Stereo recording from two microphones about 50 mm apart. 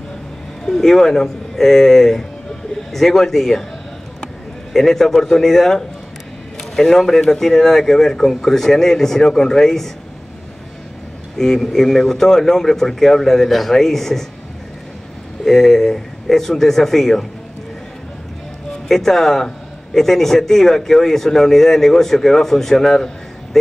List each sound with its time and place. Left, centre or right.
0.7 s a man's voice: centre
4.7 s a man's voice: centre
11.3 s a man's voice: centre
15.4 s a man's voice: centre
18.9 s a man's voice: centre